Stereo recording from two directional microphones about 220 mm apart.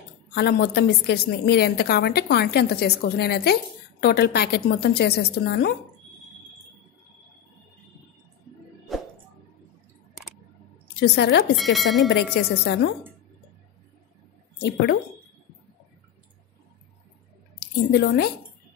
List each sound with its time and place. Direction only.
0.3 s a woman's voice: 45° left (ahead or behind)
8.9 s music: centre (ahead or behind)
11.0 s a woman's voice: 50° left (ahead or behind)
11.5 s speech: centre (ahead or behind)
12.1 s a woman's voice: 45° left (ahead or behind)
14.6 s a woman's voice: 50° left (ahead or behind)
17.6 s a woman's voice: 45° left (ahead or behind)